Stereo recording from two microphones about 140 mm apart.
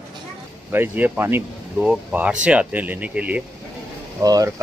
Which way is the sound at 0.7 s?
15° right (ahead or behind).